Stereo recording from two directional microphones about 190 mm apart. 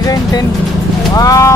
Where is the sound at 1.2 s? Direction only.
15° left (ahead or behind).